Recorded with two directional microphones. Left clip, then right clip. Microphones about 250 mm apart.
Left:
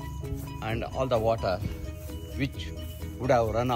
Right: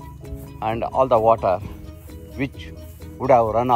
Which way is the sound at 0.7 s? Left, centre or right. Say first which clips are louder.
Right 11 dB; centre.